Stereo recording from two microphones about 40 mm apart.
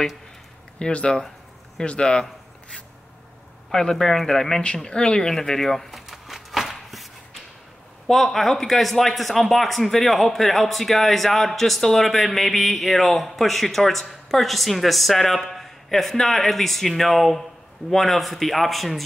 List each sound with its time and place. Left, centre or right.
0.7 s speech: left
3.7 s speech: centre
4.8 s a sound: centre
8.1 s speech: centre